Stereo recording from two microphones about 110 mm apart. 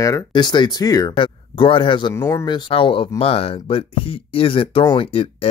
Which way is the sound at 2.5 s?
45° left (ahead or behind).